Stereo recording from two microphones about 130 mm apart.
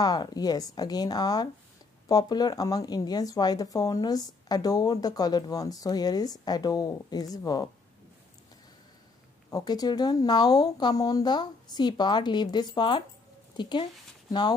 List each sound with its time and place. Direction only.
0.0 s speech: 30° left (ahead or behind)
9.5 s speech: 30° left (ahead or behind)